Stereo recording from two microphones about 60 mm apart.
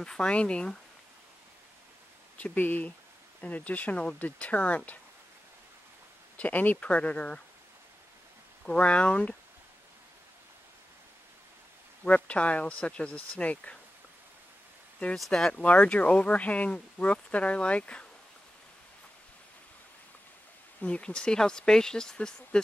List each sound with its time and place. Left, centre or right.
0.0 s speech: centre
2.3 s speech: left
6.3 s speech: left
8.6 s speech: centre
12.0 s speech: left
15.1 s speech: centre
15.5 s speech: left
20.8 s speech: centre